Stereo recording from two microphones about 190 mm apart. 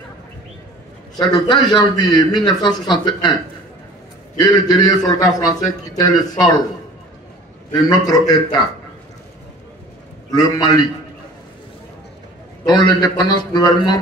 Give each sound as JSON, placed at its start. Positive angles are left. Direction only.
{"t": 1.1, "sound": "a man's voice", "side_deg": 25}
{"t": 4.4, "sound": "a man's voice", "side_deg": 20}
{"t": 7.7, "sound": "a man's voice", "side_deg": 20}
{"t": 10.3, "sound": "a man's voice", "side_deg": 20}
{"t": 12.6, "sound": "a man's voice", "side_deg": 20}